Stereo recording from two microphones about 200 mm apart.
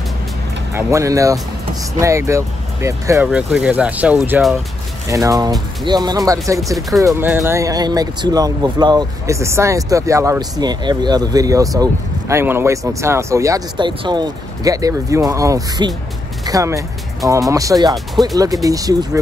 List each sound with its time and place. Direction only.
0.7 s speech: 15° right (ahead or behind)
5.1 s speech: 15° right (ahead or behind)